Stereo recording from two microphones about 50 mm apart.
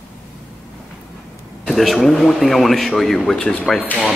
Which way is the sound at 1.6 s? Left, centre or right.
Centre.